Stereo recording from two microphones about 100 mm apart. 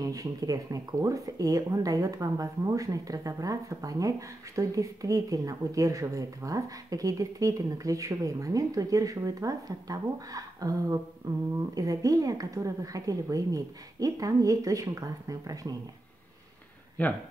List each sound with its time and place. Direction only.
0.1 s speech: 35° right (ahead or behind)
17.0 s speech: 15° left (ahead or behind)